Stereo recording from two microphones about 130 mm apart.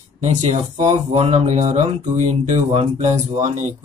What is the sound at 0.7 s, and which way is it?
Mantra, 60° right (ahead or behind).